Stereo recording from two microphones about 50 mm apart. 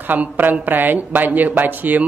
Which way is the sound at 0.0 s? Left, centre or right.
Right.